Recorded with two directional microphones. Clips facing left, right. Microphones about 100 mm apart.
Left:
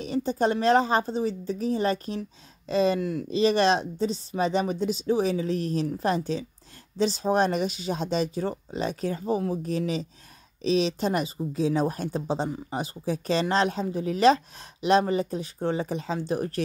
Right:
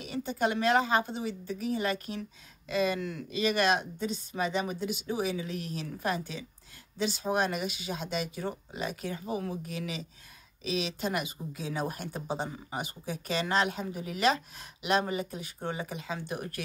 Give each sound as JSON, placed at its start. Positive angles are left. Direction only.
{"t": 0.0, "sound": "a woman's voice", "side_deg": 35}
{"t": 4.9, "sound": "speech", "side_deg": 40}